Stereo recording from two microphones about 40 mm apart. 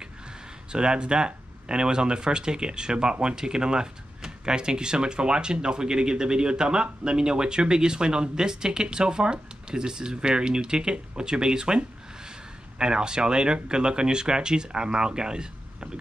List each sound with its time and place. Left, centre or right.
0.7 s speech: right